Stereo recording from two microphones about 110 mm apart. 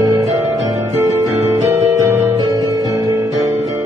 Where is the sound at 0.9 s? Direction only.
25° right (ahead or behind).